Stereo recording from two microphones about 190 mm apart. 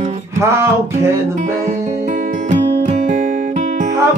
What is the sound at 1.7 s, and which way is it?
Music, 40° right (ahead or behind).